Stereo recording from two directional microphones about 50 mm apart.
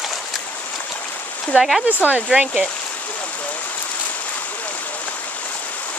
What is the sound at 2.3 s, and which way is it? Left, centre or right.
Speech, centre.